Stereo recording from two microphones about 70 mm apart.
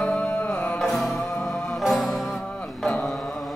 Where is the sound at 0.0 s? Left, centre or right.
Centre.